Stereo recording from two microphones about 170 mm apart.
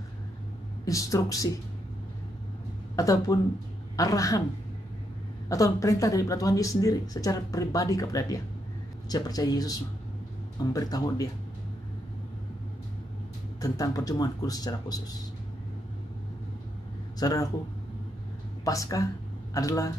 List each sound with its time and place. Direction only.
0.8 s speech: 20° left (ahead or behind)
3.0 s speech: 20° left (ahead or behind)
5.5 s speech: 20° left (ahead or behind)
13.6 s speech: 20° left (ahead or behind)
17.2 s speech: 20° left (ahead or behind)
18.6 s speech: 20° left (ahead or behind)